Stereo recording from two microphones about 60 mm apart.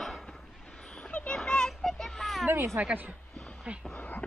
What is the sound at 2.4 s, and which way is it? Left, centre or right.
Speech, right.